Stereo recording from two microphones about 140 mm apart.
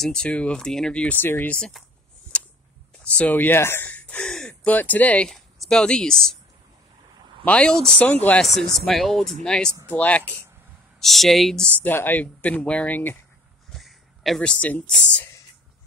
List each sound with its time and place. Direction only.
0.0 s speech: 5° left (ahead or behind)
2.3 s a sound: 10° left (ahead or behind)
3.0 s speech: 10° left (ahead or behind)
7.4 s speech: 10° left (ahead or behind)
9.7 s speech: 20° right (ahead or behind)
9.9 s speech: 10° left (ahead or behind)
13.7 s speech: centre (ahead or behind)